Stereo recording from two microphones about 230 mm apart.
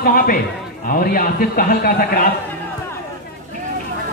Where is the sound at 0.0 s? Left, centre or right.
Left.